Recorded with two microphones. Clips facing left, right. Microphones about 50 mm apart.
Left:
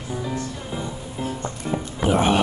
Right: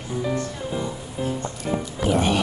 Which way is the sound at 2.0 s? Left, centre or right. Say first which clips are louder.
Left 2 dB; left.